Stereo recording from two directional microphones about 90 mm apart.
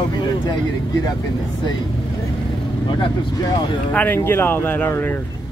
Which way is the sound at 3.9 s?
20° left (ahead or behind).